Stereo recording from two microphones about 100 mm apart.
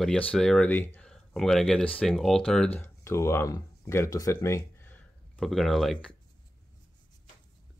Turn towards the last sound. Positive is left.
turn(degrees=0)  # may be behind; listen again after turning